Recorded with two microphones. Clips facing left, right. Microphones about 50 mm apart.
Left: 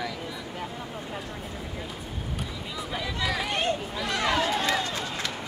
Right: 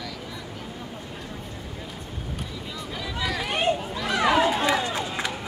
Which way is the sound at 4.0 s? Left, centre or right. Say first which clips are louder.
Right 5 dB; centre.